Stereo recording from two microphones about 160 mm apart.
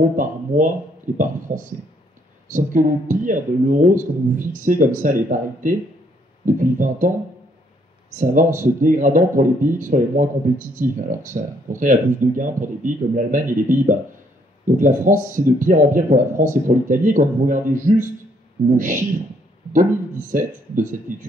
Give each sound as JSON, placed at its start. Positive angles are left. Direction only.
{"t": 0.0, "sound": "speech", "side_deg": -55}
{"t": 8.1, "sound": "speech", "side_deg": -55}